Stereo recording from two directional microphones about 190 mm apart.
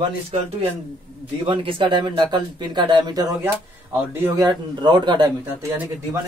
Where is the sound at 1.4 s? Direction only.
25° right (ahead or behind); by 4.4 s 10° right (ahead or behind).